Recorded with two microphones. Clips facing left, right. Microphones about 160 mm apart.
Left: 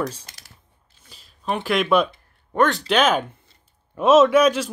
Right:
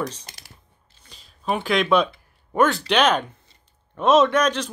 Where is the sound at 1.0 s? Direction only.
Centre (ahead or behind).